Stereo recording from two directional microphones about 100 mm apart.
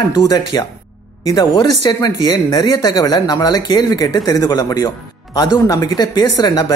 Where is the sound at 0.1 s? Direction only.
40° left (ahead or behind).